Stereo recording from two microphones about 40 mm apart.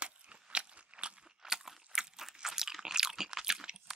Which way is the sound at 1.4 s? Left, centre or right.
Centre.